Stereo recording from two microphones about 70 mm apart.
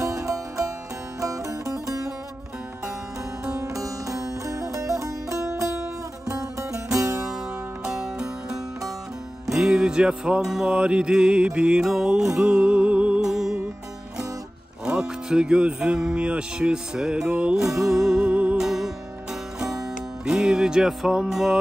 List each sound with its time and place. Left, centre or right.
0.0 s music: right
3.5 s music: right
7.9 s music: centre
9.5 s speech: centre
12.4 s music: centre
14.9 s speech: centre
18.6 s music: centre
20.2 s speech: centre